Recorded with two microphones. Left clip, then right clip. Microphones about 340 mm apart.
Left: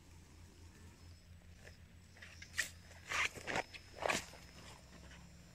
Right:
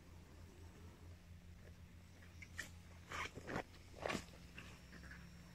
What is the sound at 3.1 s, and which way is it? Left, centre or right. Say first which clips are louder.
Dog: left 9 dB; left.